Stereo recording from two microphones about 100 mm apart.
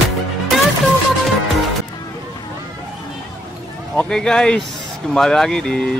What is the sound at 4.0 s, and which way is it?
Speech, 5° left (ahead or behind).